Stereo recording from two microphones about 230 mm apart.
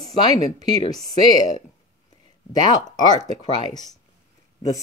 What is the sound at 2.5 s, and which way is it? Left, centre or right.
Speech, centre.